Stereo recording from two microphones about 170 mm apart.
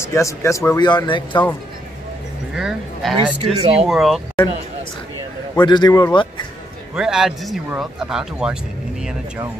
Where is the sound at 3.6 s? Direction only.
35° right (ahead or behind).